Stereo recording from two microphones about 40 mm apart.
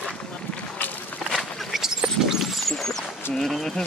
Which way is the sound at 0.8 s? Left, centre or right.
Left.